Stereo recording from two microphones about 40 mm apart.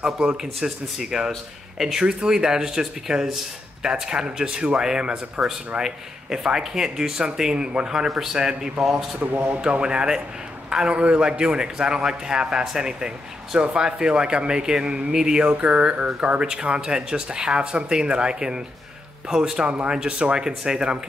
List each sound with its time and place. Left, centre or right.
0.0 s speech: centre
2.0 s a man's voice: centre
9.2 s a man's voice: right
9.6 s a man's voice: right